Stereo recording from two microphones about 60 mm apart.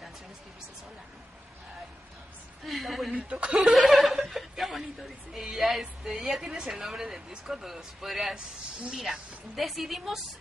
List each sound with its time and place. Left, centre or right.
2.6 s a woman's voice: centre
3.2 s speech: centre
3.5 s chuckle: centre
5.3 s speech: centre